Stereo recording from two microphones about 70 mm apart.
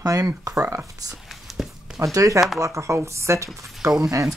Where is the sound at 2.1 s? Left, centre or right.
Right.